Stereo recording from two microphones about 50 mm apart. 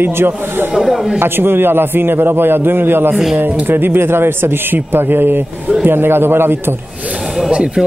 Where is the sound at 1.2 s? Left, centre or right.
Right.